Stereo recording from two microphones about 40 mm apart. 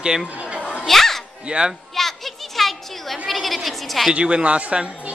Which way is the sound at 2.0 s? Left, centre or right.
Centre.